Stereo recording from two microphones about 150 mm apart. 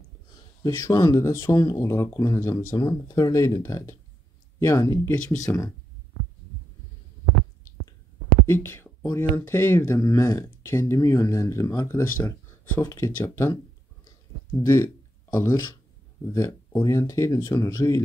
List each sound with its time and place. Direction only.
0.7 s speech: 20° left (ahead or behind)
8.5 s speech: 15° left (ahead or behind)
16.3 s speech: 20° left (ahead or behind)